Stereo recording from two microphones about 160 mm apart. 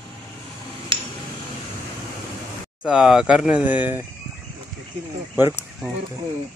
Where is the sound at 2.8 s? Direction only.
5° right (ahead or behind).